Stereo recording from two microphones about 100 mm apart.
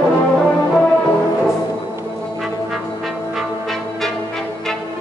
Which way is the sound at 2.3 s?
Centre (ahead or behind).